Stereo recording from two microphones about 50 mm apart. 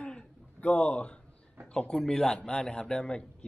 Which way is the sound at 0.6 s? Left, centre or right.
Left.